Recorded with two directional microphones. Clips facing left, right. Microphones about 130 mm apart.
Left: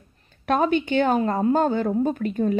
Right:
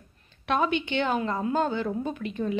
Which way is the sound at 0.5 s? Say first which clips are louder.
Left 5 dB; 45° left (ahead or behind).